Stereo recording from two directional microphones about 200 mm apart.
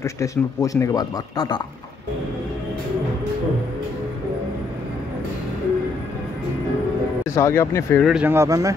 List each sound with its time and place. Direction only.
0.0 s speech: 15° left (ahead or behind)
7.2 s speech: 15° left (ahead or behind)
8.0 s speech: 5° right (ahead or behind)